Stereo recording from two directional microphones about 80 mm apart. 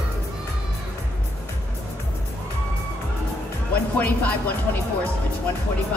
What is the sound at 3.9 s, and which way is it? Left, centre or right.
Speech, centre.